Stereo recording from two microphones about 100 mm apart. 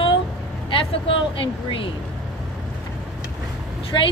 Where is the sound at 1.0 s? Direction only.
60° left (ahead or behind).